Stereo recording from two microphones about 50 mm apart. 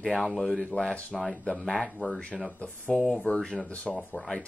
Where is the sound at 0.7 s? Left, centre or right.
Left.